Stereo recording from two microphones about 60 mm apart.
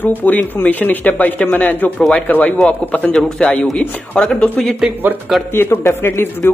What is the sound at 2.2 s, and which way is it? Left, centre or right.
Speech, left.